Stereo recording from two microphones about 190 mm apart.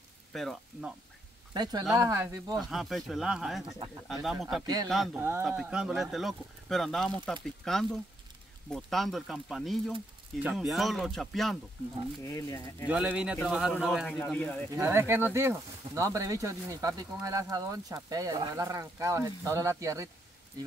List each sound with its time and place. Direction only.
0.3 s speech: centre (ahead or behind)
1.5 s speech: 20° right (ahead or behind)
2.5 s speech: centre (ahead or behind)
5.2 s speech: 10° right (ahead or behind)
12.2 s speech: 15° left (ahead or behind)
12.8 s speech: 5° right (ahead or behind)
14.7 s speech: 15° right (ahead or behind)